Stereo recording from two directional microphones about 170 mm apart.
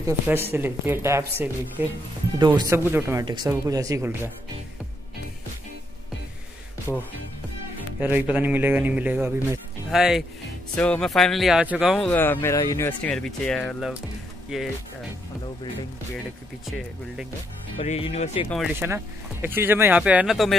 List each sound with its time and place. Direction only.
0.0 s speech: 15° right (ahead or behind)
2.3 s speech: 25° right (ahead or behind)
2.8 s speech: 15° right (ahead or behind)
8.0 s speech: 10° right (ahead or behind)
12.1 s speech: 10° left (ahead or behind)
13.1 s speech: 5° left (ahead or behind)
17.7 s speech: 35° left (ahead or behind)
18.8 s speech: 10° right (ahead or behind)